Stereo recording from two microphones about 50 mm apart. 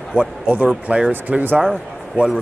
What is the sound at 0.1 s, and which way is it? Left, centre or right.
Speech, right.